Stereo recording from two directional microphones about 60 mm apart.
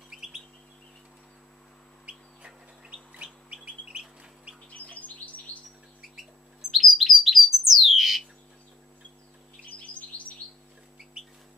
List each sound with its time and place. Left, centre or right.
0.1 s bird: centre
3.2 s bird: centre
5.0 s chirp: left
6.7 s bird: centre